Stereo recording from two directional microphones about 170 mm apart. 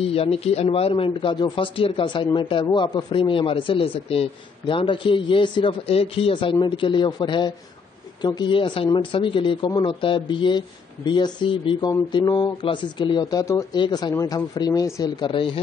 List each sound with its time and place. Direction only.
0.0 s speech: 35° left (ahead or behind)